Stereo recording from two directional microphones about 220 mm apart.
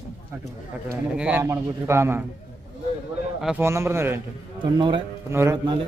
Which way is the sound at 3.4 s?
10° right (ahead or behind).